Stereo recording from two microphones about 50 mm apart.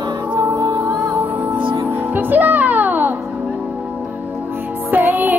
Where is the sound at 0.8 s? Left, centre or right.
Right.